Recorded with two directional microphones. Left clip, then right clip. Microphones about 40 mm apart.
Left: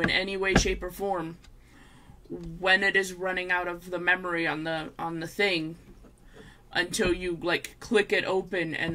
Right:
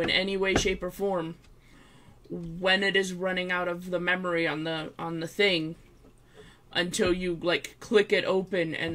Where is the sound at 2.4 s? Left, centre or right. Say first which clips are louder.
Left 2 dB; centre.